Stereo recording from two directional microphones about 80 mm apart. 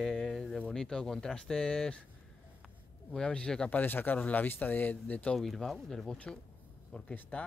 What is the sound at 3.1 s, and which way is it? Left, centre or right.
Speech, centre.